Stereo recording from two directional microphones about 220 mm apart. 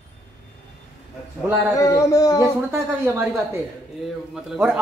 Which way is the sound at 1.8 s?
15° left (ahead or behind).